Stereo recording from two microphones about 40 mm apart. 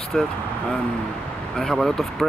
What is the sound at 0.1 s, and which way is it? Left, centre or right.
Speech, centre.